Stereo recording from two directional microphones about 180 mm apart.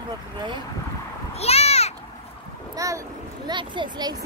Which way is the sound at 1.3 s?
35° left (ahead or behind).